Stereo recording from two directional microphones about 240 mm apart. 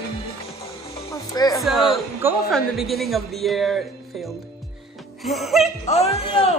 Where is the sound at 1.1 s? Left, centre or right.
Centre.